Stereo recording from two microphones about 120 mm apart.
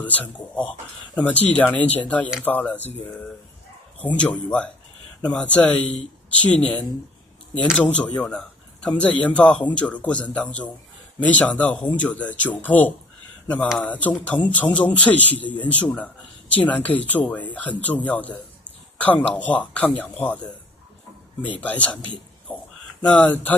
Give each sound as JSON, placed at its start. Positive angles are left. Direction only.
{"t": 0.0, "sound": "speech", "side_deg": 15}
{"t": 21.5, "sound": "speech", "side_deg": 15}